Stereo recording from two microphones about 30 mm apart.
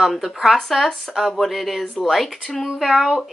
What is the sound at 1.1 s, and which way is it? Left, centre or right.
Speech, centre.